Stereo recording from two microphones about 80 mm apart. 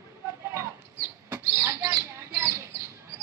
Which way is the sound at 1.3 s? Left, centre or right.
Right.